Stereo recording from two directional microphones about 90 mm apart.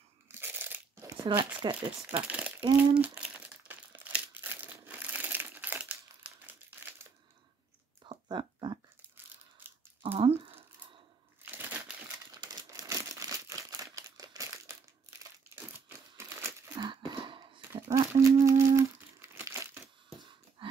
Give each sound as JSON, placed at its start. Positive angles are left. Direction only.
{"t": 0.3, "sound": "crunch", "side_deg": -20}
{"t": 1.3, "sound": "speech", "side_deg": -70}
{"t": 2.0, "sound": "speech", "side_deg": -15}
{"t": 2.8, "sound": "crumpling", "side_deg": -15}
{"t": 8.0, "sound": "a sound", "side_deg": -60}
{"t": 9.1, "sound": "a sound", "side_deg": -20}
{"t": 10.1, "sound": "a sound", "side_deg": -90}
{"t": 11.4, "sound": "crumpling", "side_deg": -25}
{"t": 12.3, "sound": "crumpling", "side_deg": -50}
{"t": 12.9, "sound": "crumpling", "side_deg": -35}
{"t": 14.7, "sound": "crumpling", "side_deg": -30}
{"t": 16.7, "sound": "a sound", "side_deg": -55}
{"t": 17.6, "sound": "humming", "side_deg": -30}